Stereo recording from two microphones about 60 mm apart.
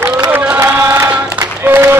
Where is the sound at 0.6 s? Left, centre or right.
Right.